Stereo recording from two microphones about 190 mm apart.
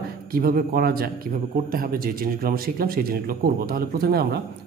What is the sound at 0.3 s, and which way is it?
A man's voice, 50° right (ahead or behind).